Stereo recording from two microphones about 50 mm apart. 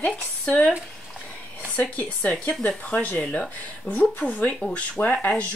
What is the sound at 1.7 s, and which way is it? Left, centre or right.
Speech, left.